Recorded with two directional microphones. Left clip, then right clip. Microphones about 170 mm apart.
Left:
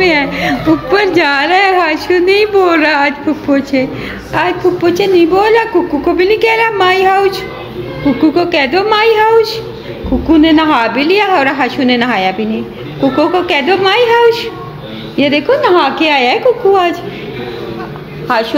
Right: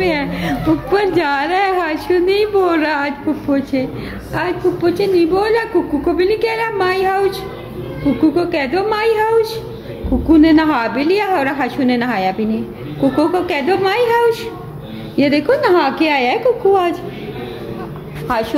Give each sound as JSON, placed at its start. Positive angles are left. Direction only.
{"t": 0.0, "sound": "a woman's voice", "side_deg": 0}
{"t": 10.2, "sound": "a woman's voice", "side_deg": -10}
{"t": 15.1, "sound": "a woman's voice", "side_deg": -20}